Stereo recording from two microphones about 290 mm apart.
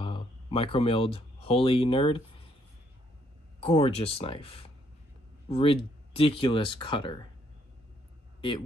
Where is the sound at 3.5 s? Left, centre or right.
Centre.